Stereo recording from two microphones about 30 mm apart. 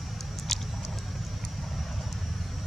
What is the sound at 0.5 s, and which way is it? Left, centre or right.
Rodents, centre.